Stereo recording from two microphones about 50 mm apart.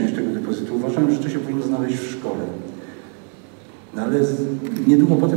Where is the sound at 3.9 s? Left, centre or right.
Centre.